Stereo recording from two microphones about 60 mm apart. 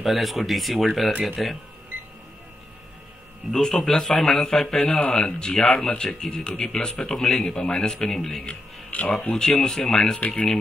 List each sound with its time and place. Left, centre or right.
0.0 s speech: centre
3.5 s a man's voice: centre
8.5 s speech: left
9.3 s a man's voice: centre